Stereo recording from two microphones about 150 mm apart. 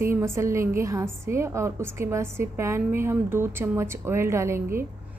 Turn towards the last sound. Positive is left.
turn(degrees=-15)  # may be behind; listen again after turning